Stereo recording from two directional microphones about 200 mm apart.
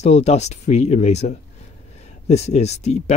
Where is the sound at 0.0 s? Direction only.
35° left (ahead or behind).